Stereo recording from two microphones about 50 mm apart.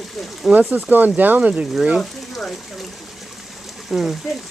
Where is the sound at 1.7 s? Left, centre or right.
Right.